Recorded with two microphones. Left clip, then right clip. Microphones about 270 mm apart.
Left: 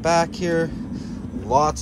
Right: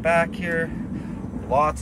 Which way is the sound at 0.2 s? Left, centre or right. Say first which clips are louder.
Left 2 dB; centre.